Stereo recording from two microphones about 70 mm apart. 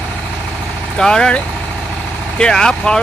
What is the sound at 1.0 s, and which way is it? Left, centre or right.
Speech, centre.